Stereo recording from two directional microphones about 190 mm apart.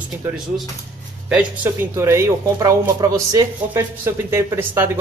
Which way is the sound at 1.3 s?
5° right (ahead or behind).